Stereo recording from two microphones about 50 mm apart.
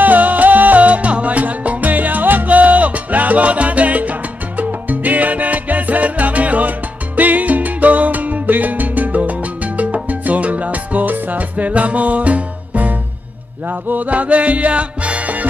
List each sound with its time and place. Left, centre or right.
0.0 s music: right